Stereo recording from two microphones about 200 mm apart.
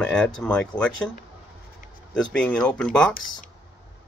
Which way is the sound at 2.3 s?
5° left (ahead or behind).